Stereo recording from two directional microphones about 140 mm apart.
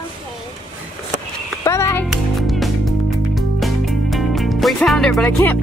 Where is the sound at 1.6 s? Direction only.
20° left (ahead or behind).